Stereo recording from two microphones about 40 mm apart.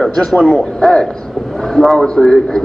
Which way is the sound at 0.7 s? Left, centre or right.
Centre.